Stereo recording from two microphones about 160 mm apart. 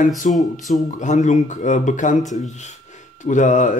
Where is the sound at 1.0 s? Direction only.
50° left (ahead or behind).